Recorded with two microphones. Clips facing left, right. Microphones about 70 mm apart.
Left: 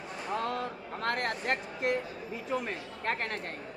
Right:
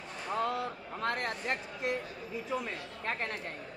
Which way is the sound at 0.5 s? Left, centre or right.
Left.